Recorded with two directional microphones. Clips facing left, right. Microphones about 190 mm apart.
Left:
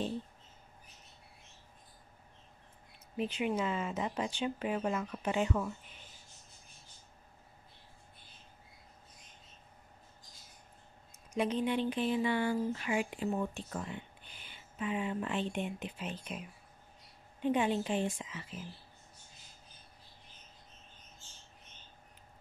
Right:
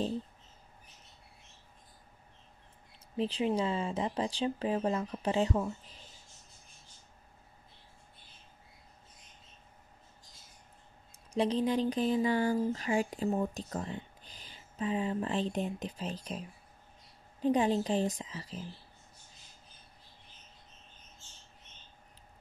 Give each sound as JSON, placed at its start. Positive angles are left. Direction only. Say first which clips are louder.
{"t": 3.2, "sound": "speech", "louder": "right 3 dB", "side_deg": -30}
{"t": 11.3, "sound": "speech", "louder": "right 3 dB", "side_deg": -35}